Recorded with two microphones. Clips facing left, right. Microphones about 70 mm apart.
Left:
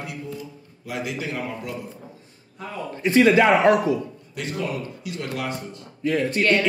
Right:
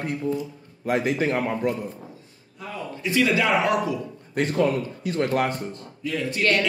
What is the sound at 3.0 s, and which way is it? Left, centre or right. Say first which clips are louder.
Speech: left 6 dB; left.